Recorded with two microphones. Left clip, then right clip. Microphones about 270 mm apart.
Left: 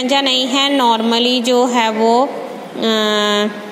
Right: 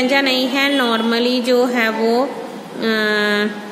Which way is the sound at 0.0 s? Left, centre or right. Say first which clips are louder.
Left 1 dB; centre.